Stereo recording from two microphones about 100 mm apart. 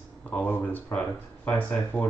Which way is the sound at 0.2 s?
15° left (ahead or behind).